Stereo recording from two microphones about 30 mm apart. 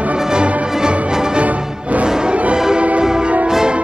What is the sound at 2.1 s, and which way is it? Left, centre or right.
Music, right.